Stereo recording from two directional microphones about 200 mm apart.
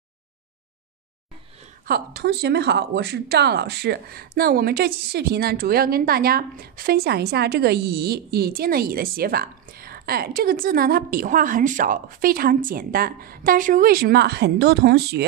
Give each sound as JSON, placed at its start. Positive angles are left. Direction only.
{"t": 1.9, "sound": "speech", "side_deg": -50}